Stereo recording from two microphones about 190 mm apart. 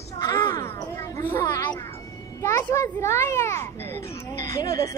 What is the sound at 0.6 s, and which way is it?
A child's voice, 15° left (ahead or behind).